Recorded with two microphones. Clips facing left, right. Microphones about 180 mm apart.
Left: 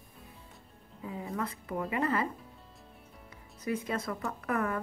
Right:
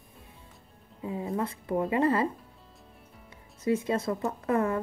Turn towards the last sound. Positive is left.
turn(degrees=-25)  # may be behind; listen again after turning